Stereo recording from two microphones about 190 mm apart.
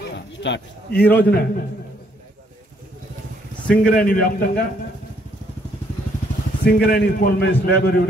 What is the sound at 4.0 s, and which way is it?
Speech, 50° left (ahead or behind).